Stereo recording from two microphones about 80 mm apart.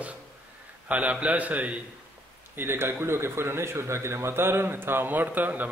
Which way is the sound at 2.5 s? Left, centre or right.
Right.